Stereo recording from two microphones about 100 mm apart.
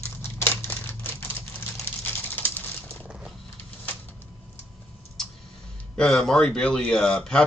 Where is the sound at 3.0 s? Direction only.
10° right (ahead or behind).